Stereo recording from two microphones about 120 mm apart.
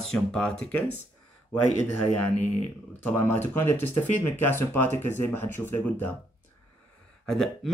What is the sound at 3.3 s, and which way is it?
A man's voice, 20° left (ahead or behind).